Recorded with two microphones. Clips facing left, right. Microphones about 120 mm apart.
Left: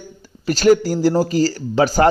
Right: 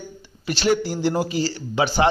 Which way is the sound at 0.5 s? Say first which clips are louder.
Left 7 dB; 40° left (ahead or behind).